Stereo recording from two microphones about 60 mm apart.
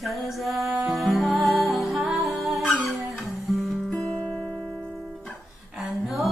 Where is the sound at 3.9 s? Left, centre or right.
Centre.